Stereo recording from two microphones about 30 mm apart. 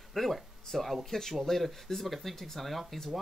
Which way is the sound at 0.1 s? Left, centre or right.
Centre.